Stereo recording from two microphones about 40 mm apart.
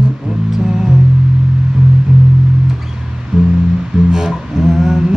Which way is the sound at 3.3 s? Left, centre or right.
Centre.